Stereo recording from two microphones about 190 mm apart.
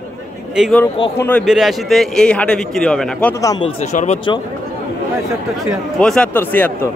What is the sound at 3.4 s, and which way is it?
Speech, 20° left (ahead or behind).